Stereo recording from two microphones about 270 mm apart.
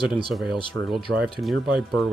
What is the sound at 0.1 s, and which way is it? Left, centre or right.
Speech, centre.